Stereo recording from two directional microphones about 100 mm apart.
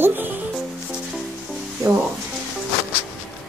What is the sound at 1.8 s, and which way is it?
Music, 40° right (ahead or behind).